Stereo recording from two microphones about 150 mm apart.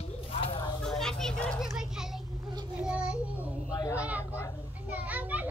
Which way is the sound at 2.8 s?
10° right (ahead or behind).